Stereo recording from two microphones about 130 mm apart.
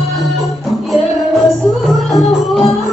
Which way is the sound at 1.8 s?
Centre (ahead or behind).